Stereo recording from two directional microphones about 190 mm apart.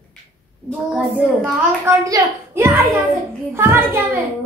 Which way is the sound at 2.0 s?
15° right (ahead or behind).